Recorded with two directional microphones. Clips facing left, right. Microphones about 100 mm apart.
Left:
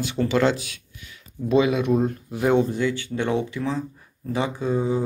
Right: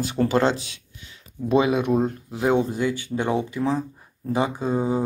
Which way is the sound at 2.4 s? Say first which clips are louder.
Left 1 dB; 15° right (ahead or behind).